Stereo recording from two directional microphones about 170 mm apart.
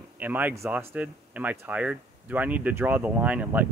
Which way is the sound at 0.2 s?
10° right (ahead or behind).